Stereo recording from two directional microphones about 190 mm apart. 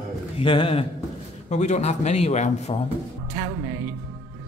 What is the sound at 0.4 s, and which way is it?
A man's voice, 30° left (ahead or behind).